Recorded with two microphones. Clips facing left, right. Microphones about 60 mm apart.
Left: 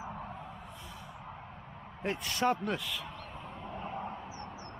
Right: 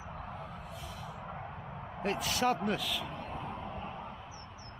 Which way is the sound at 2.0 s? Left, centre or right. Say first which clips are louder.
Even; centre.